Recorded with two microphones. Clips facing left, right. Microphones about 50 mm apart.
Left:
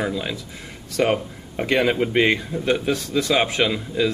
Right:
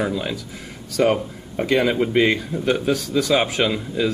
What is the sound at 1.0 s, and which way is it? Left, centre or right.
Speech, centre.